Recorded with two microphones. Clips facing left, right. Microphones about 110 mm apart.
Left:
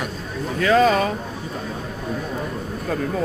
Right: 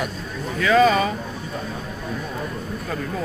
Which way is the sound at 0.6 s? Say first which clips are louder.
Even; 40° left (ahead or behind).